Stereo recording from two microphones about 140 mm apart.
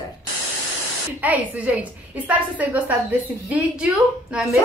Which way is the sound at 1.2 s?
10° right (ahead or behind).